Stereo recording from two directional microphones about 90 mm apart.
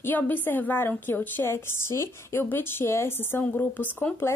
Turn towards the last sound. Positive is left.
turn(degrees=15)  # may be behind; listen again after turning